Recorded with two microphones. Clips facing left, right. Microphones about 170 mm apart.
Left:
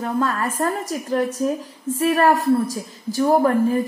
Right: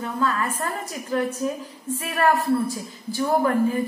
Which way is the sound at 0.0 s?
40° left (ahead or behind).